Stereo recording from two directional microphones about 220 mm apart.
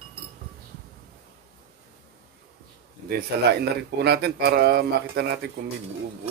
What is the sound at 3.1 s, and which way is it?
Speech, 50° right (ahead or behind).